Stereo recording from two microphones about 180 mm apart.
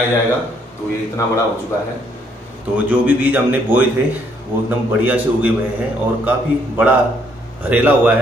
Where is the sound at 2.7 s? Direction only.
10° right (ahead or behind).